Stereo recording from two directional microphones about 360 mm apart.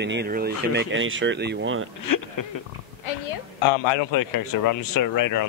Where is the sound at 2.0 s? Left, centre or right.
Left.